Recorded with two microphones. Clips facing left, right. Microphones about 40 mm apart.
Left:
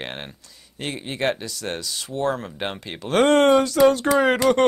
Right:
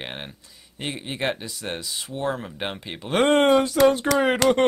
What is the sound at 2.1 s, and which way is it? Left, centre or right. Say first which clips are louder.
Speech: left 3 dB; centre.